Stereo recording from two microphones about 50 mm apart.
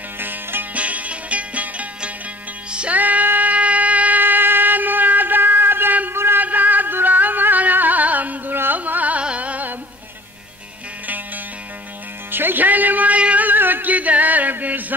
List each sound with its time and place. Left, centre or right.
0.2 s music: right
0.7 s music: right
3.0 s music: right
4.2 s music: right
6.4 s music: right
8.5 s carnatic music: right
9.2 s music: right
12.3 s music: right